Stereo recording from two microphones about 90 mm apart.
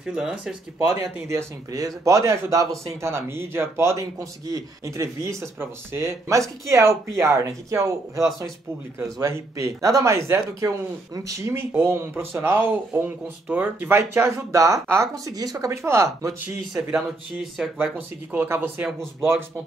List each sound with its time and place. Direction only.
0.0 s speech: 10° right (ahead or behind)
1.2 s a man's voice: 35° right (ahead or behind)
9.2 s a man's voice: 35° right (ahead or behind)
15.7 s a man's voice: 30° right (ahead or behind)
16.7 s speech: centre (ahead or behind)
17.7 s speech: 20° right (ahead or behind)